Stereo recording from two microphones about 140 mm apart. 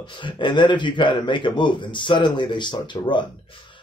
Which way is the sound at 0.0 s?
35° left (ahead or behind).